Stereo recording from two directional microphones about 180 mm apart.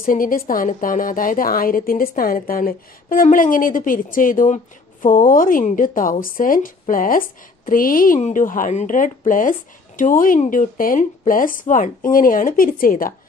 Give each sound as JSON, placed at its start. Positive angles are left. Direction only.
{"t": 0.0, "sound": "speech", "side_deg": 50}